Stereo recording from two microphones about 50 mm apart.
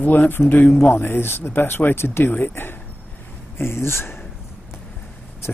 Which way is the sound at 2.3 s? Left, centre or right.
Left.